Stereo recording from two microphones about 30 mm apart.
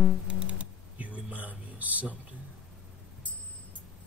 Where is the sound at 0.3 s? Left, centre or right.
Right.